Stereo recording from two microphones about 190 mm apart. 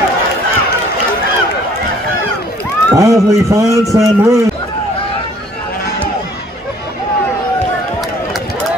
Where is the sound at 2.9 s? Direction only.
15° right (ahead or behind).